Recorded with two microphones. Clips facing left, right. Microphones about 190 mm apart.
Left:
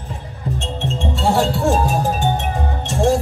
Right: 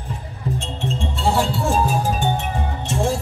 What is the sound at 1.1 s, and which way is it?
Music, 45° left (ahead or behind).